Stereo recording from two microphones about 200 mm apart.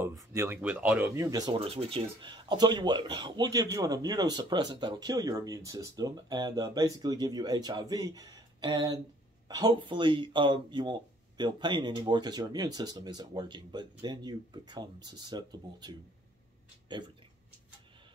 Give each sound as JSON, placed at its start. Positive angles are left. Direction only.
{"t": 0.0, "sound": "speech", "side_deg": -15}